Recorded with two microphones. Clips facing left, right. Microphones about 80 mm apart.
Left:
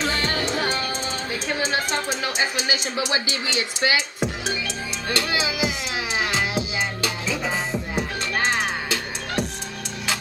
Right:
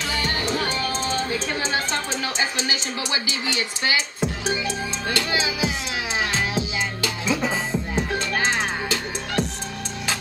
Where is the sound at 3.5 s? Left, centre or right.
Left.